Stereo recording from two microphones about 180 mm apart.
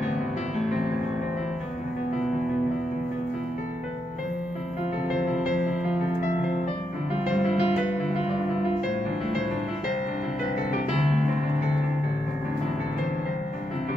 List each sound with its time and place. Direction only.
5.1 s music: 5° right (ahead or behind)
7.2 s music: 5° right (ahead or behind)
8.2 s music: 35° left (ahead or behind)